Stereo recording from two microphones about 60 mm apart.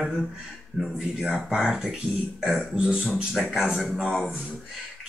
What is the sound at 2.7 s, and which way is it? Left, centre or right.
Speech, centre.